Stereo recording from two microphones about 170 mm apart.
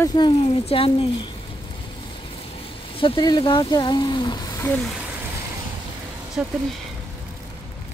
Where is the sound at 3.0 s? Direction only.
30° left (ahead or behind).